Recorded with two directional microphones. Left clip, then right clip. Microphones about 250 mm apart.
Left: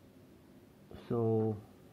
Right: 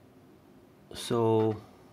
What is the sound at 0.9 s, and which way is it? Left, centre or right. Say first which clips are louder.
Speech: right 7 dB; right.